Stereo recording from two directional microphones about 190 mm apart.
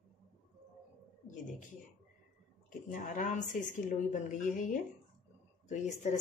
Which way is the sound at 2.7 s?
40° left (ahead or behind).